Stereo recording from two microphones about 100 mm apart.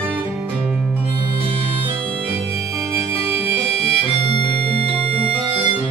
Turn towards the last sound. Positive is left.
turn(degrees=-80)